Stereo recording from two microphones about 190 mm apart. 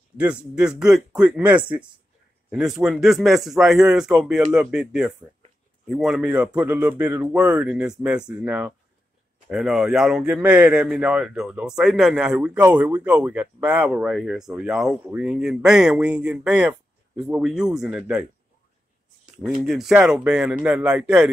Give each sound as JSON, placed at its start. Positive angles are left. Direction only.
{"t": 0.2, "sound": "speech", "side_deg": -5}
{"t": 19.3, "sound": "speech", "side_deg": -5}